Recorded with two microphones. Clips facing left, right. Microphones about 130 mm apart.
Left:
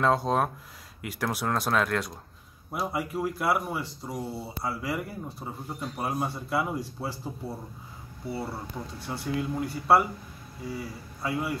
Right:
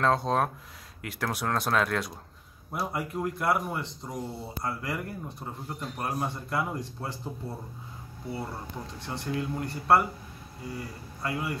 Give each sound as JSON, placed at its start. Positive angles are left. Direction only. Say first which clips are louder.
{"t": 0.0, "sound": "speech", "louder": "left 1 dB", "side_deg": 5}
{"t": 9.0, "sound": "speech", "louder": "left 1 dB", "side_deg": 5}